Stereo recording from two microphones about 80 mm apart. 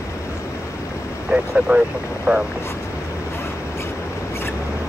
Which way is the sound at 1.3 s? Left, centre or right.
Centre.